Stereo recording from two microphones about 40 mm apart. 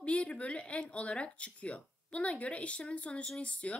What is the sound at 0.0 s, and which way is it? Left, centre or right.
Speech, left.